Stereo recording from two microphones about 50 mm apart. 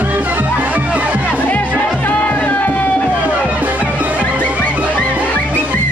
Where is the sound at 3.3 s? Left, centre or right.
Right.